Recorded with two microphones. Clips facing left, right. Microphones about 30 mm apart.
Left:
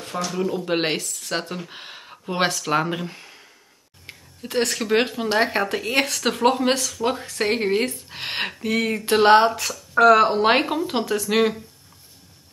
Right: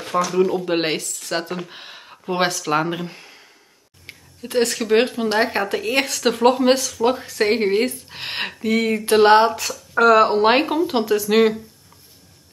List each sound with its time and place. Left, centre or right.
0.3 s speech: right
0.7 s speech: centre